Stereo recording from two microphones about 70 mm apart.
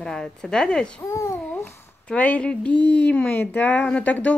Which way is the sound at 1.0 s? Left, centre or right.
Left.